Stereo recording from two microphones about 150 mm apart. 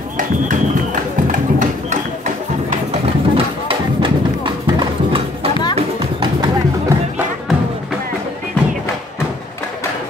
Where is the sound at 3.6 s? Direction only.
35° right (ahead or behind).